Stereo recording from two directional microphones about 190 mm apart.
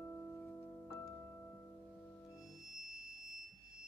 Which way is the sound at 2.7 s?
50° right (ahead or behind).